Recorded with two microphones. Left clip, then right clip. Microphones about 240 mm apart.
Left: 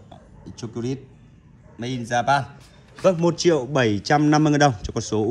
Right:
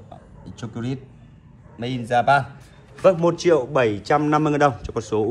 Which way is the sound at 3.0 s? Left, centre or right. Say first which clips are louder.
Right 2 dB; left.